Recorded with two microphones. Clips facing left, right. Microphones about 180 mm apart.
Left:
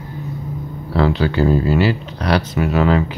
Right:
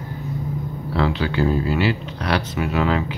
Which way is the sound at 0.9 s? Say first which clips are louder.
Left 5 dB; 40° left (ahead or behind).